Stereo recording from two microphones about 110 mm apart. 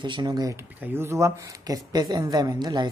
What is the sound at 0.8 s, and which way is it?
Speech, 25° right (ahead or behind).